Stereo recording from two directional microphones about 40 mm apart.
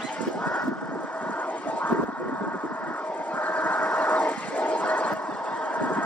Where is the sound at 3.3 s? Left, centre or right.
Left.